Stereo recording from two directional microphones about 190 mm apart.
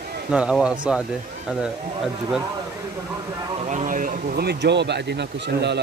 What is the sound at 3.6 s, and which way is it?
Speech, 40° right (ahead or behind).